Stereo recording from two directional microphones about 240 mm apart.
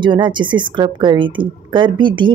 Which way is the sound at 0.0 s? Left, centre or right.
Centre.